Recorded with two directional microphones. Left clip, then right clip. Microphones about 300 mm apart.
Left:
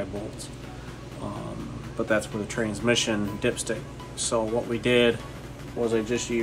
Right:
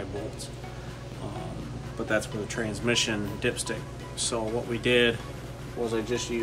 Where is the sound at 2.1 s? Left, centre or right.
Centre.